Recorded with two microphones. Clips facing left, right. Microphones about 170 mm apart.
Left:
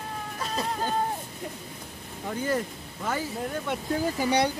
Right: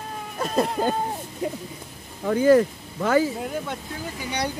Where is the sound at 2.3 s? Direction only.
90° right.